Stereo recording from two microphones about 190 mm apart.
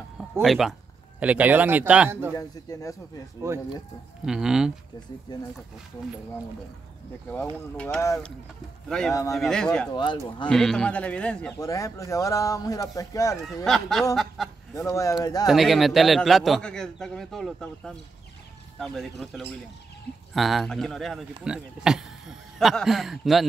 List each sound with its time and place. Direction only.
0.2 s a man's voice: centre (ahead or behind)
2.3 s speech: 20° left (ahead or behind)
3.5 s a man's voice: 15° right (ahead or behind)
4.3 s a man's voice: 5° right (ahead or behind)
7.7 s a man's voice: 5° left (ahead or behind)
11.5 s speech: 15° left (ahead or behind)
13.7 s a man's voice: centre (ahead or behind)
14.7 s speech: 15° left (ahead or behind)
15.4 s a man's voice: centre (ahead or behind)